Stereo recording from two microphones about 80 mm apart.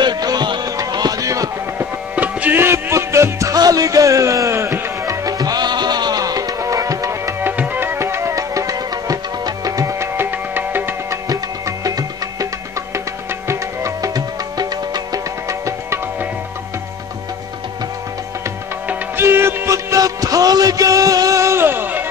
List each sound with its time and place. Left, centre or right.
0.0 s music: right
1.8 s music: centre; by 7.3 s right
7.4 s music: right
10.5 s music: right
11.2 s music: right
13.5 s music: right
18.9 s music: right